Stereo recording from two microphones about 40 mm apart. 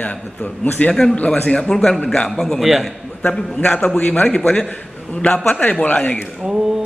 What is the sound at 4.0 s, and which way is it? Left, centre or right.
Speech, left.